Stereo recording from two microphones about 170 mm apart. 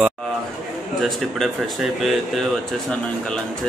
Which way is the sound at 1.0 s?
Centre (ahead or behind).